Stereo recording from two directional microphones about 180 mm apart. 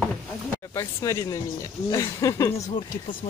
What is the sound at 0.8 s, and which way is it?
Speech, 15° left (ahead or behind).